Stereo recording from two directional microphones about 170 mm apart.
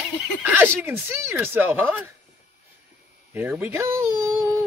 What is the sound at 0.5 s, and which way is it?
Speech, 10° right (ahead or behind).